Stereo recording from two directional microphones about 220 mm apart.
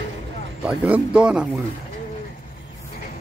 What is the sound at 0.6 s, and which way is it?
Speech, 5° right (ahead or behind).